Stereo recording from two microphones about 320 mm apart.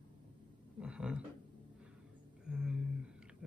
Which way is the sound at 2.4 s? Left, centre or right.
Centre.